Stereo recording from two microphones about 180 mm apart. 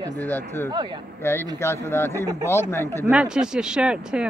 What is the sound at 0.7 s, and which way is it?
Speech, 25° right (ahead or behind).